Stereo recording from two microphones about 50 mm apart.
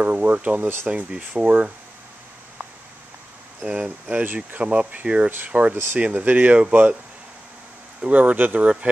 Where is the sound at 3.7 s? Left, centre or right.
Right.